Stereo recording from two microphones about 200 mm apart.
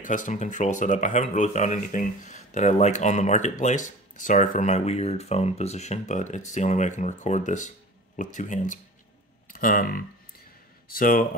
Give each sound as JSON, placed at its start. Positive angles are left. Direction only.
{"t": 0.0, "sound": "speech", "side_deg": 40}